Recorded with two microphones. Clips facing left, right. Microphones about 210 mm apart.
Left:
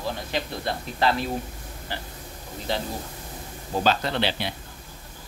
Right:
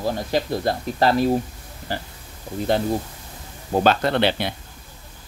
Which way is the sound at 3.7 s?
55° right (ahead or behind).